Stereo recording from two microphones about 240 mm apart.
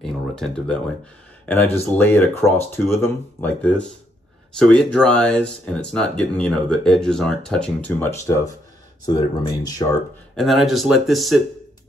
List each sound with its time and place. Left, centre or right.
0.0 s speech: centre
10.3 s speech: centre